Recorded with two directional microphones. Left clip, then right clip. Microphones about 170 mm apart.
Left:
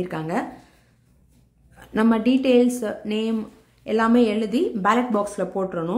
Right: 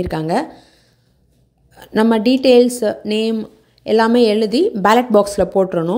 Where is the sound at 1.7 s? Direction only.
35° right (ahead or behind).